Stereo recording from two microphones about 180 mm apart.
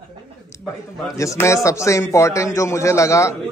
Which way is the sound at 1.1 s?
15° left (ahead or behind).